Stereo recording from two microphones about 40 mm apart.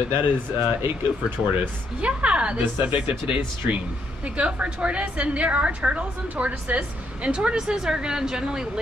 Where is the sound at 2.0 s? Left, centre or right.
Right.